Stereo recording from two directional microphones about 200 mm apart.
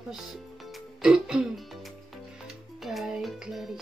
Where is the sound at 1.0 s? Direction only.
5° right (ahead or behind).